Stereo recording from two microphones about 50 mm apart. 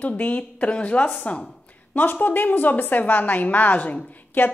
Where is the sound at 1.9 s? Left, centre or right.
Left.